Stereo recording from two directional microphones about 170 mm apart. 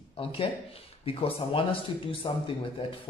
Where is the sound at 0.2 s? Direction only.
30° left (ahead or behind).